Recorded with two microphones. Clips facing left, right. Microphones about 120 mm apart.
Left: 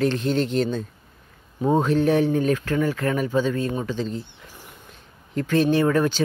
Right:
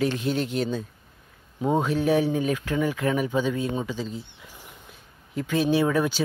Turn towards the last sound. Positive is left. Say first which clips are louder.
# left 3 dB
turn(degrees=-10)  # may be behind; listen again after turning